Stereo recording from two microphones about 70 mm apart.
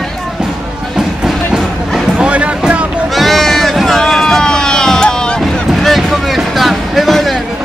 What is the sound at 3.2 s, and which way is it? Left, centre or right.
Run, centre.